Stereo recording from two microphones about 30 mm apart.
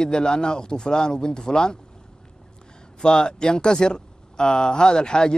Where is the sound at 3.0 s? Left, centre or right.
Left.